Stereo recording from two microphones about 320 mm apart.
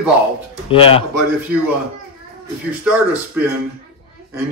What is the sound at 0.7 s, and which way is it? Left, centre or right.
Speech, centre.